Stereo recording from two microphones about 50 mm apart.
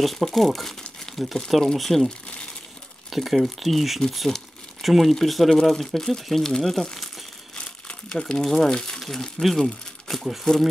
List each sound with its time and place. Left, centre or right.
0.0 s speech: centre
2.0 s speech: left
3.1 s speech: centre
7.5 s crumpling: centre
9.0 s speech: centre